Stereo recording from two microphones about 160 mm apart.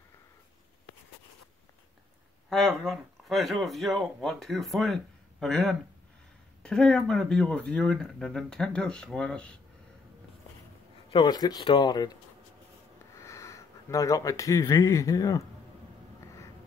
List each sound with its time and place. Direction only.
2.5 s speech: 5° left (ahead or behind)
11.1 s speech: 25° left (ahead or behind)